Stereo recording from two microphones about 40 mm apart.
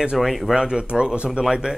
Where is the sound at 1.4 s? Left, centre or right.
Centre.